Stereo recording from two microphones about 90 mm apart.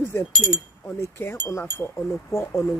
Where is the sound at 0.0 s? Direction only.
20° left (ahead or behind).